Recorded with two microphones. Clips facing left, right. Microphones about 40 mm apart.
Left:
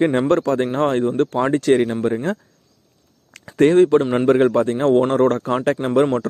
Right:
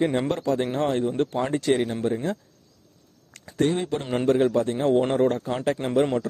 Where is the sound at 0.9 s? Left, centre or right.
Left.